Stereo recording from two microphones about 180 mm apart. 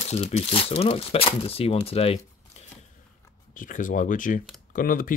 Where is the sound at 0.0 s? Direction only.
35° left (ahead or behind).